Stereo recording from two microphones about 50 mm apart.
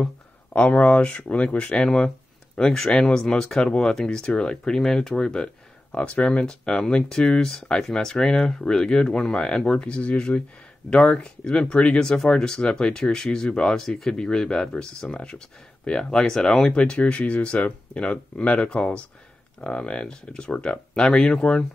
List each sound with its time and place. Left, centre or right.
0.5 s speech: left
1.9 s speech: centre
5.9 s speech: left; by 16.6 s centre
16.6 s speech: centre